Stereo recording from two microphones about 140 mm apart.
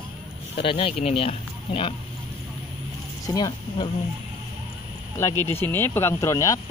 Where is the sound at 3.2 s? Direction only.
30° left (ahead or behind).